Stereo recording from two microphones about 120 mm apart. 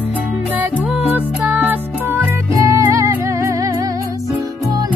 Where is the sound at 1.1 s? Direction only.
15° right (ahead or behind).